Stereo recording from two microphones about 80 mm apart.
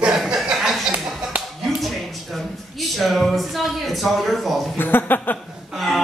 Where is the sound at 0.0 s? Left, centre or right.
Centre.